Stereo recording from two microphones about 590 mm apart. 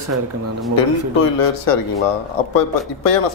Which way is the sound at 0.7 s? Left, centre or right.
Left.